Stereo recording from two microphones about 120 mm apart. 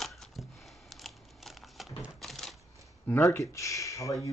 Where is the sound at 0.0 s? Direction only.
Centre (ahead or behind).